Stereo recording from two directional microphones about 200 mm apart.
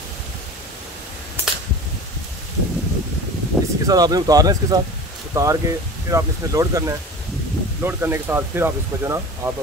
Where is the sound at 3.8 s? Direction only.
20° right (ahead or behind).